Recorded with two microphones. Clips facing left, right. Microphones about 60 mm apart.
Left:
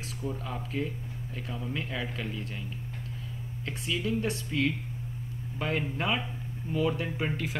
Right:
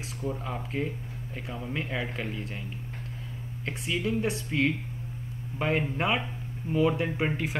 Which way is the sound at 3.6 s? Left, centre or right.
Centre.